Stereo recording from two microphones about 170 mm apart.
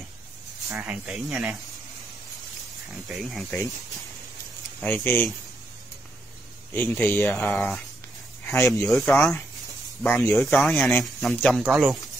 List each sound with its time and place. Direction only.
0.7 s speech: 5° right (ahead or behind)
3.1 s speech: centre (ahead or behind)
4.8 s speech: 10° left (ahead or behind)
6.7 s speech: 10° left (ahead or behind)
8.5 s speech: 15° left (ahead or behind)
8.8 s speech: centre (ahead or behind)
10.0 s speech: 10° left (ahead or behind)
10.5 s speech: 5° left (ahead or behind)